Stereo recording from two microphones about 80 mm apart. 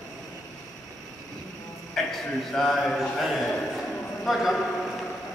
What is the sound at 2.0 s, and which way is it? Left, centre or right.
A man's voice, centre.